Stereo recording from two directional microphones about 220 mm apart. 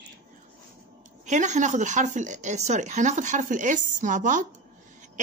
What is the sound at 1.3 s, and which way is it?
Speech, 35° right (ahead or behind).